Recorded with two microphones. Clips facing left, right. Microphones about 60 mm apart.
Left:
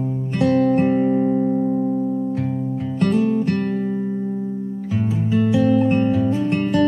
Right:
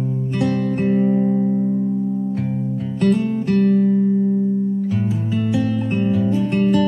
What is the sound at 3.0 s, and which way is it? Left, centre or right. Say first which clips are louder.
Music: even; centre.